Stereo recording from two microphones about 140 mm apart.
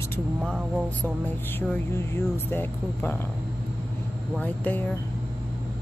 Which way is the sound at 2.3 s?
15° left (ahead or behind).